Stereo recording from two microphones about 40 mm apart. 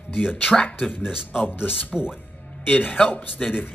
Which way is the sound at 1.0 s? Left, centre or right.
Centre.